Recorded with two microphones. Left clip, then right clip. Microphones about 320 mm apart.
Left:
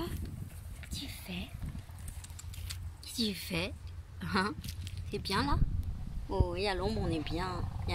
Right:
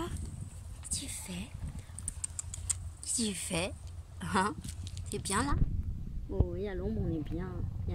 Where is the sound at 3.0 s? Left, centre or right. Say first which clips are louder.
Left 2 dB; centre.